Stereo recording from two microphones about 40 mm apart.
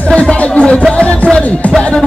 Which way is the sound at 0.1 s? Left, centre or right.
Left.